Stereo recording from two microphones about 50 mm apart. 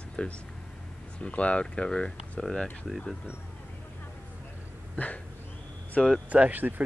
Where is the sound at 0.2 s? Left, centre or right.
Left.